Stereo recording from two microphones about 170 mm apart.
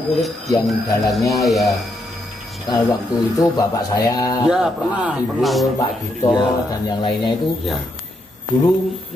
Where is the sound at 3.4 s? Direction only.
20° left (ahead or behind).